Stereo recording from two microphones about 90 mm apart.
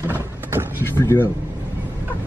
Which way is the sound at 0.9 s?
25° left (ahead or behind).